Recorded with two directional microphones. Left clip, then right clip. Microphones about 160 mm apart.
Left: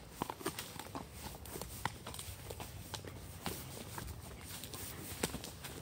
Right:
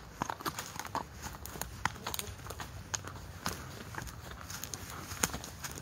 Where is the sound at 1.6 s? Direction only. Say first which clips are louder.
Right 7 dB; 30° right (ahead or behind).